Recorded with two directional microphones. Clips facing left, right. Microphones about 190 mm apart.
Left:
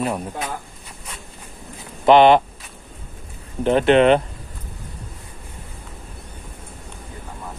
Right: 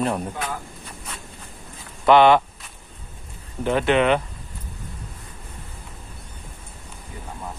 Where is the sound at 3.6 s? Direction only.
30° left (ahead or behind).